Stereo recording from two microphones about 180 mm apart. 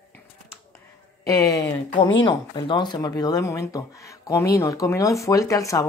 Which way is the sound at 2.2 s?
25° left (ahead or behind).